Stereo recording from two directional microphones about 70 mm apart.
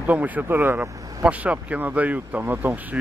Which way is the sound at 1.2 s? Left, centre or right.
Centre.